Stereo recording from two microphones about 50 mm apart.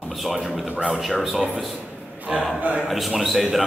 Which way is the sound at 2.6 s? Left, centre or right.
Right.